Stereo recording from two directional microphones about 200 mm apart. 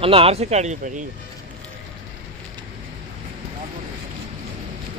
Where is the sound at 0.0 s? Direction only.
30° right (ahead or behind).